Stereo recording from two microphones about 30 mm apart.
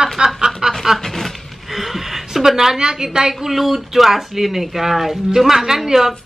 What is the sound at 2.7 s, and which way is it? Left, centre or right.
Speech, right.